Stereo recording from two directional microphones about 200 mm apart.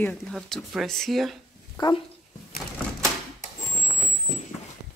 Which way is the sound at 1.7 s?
20° left (ahead or behind).